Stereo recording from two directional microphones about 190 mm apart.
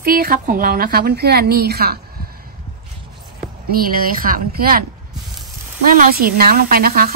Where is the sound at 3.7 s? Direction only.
50° right (ahead or behind).